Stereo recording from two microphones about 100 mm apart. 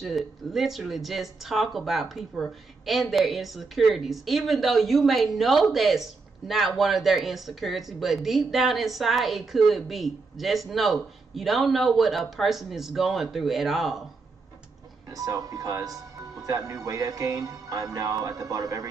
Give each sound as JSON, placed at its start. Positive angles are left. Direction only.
{"t": 0.0, "sound": "speech", "side_deg": 0}
{"t": 15.0, "sound": "speech", "side_deg": -35}